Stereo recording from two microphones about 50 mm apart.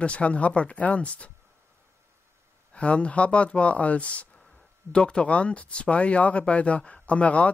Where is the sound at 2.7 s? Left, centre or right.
Left.